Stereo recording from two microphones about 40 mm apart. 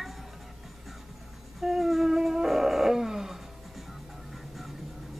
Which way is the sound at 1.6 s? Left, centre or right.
Centre.